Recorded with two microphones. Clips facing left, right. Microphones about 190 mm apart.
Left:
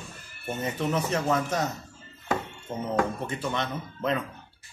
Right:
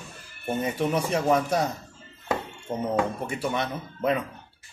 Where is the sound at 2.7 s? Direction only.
30° right (ahead or behind).